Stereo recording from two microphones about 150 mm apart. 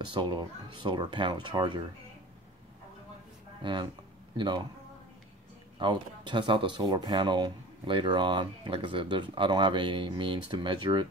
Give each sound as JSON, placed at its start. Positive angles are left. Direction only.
{"t": 0.0, "sound": "speech", "side_deg": -30}
{"t": 3.6, "sound": "speech", "side_deg": -30}
{"t": 5.8, "sound": "speech", "side_deg": -30}